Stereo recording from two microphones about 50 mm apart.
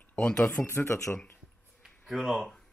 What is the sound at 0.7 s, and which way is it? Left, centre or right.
Speech, left.